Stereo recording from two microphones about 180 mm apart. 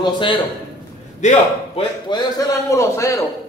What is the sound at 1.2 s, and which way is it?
Speech, 40° left (ahead or behind).